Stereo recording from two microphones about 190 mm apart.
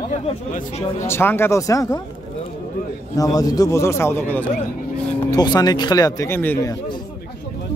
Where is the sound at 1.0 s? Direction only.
10° left (ahead or behind).